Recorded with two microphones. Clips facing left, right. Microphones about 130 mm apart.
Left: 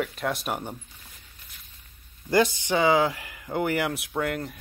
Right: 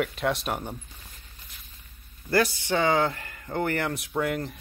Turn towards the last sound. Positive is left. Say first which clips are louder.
# right 1 dB
turn(degrees=0)  # may be behind; listen again after turning